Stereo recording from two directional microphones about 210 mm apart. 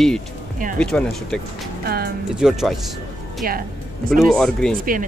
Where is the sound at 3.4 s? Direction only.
45° right (ahead or behind).